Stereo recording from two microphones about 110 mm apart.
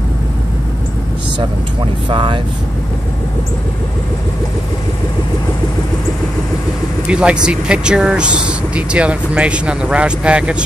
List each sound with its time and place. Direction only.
2.0 s speech: 45° right (ahead or behind)
7.1 s speech: 10° right (ahead or behind)